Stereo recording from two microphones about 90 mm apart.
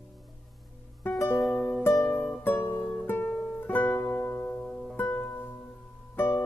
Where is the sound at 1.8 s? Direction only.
30° left (ahead or behind).